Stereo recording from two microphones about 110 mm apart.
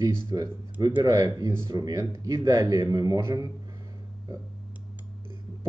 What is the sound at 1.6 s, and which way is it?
Speech, 35° right (ahead or behind).